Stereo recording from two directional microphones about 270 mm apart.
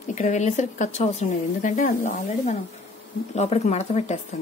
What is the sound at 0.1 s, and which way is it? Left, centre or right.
Speech, left.